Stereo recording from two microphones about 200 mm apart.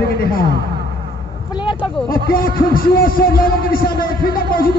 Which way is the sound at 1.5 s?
25° left (ahead or behind).